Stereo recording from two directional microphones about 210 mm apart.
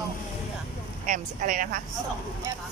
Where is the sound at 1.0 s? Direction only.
40° right (ahead or behind).